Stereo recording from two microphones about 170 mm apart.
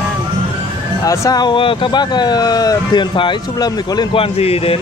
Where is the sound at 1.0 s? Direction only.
20° left (ahead or behind).